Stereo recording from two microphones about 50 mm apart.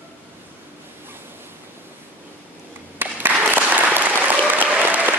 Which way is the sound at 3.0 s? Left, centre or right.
Right.